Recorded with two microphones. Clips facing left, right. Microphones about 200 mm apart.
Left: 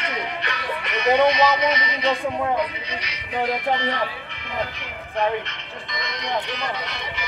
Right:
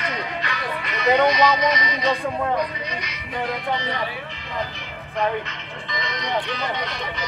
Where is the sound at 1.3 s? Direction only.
25° left (ahead or behind).